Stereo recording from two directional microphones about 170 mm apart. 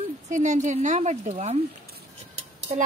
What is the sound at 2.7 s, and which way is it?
Speech, 45° right (ahead or behind).